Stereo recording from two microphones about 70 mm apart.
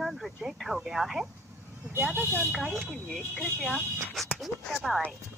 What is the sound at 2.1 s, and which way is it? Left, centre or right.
Speech, right.